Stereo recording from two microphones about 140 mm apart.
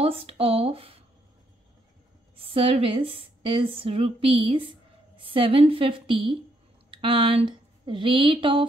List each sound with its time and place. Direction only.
0.0 s speech: 45° right (ahead or behind)
2.3 s a woman's voice: 40° right (ahead or behind)